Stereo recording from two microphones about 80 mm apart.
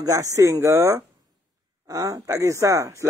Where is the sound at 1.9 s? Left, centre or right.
Right.